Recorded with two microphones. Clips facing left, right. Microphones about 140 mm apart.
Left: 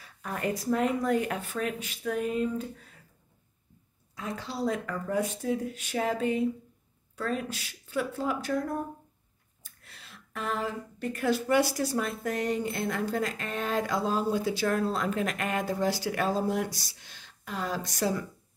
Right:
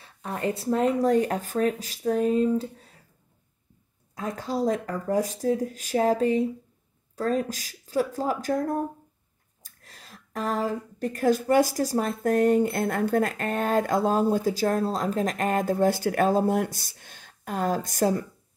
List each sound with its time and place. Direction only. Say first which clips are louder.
0.0 s speech: right 3 dB; 30° right (ahead or behind)
4.1 s a woman's voice: right 7 dB; 45° right (ahead or behind)